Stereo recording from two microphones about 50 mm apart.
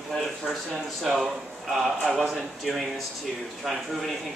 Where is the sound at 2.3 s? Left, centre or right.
Centre.